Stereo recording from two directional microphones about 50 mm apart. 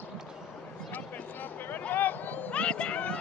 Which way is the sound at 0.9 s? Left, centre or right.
Left.